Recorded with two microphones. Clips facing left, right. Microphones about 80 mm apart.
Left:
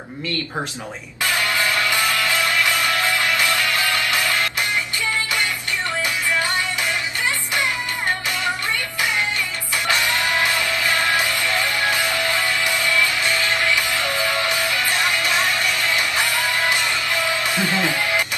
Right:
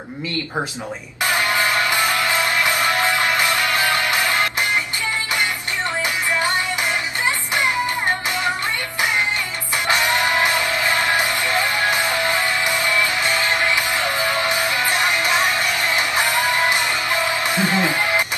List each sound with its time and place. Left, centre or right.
1.2 s music: right
7.2 s music: right
9.8 s music: right